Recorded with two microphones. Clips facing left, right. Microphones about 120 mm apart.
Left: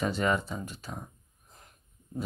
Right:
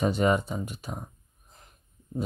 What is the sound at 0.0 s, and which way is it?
Speech, 20° right (ahead or behind).